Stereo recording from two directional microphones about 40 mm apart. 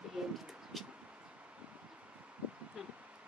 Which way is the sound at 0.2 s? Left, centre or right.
Centre.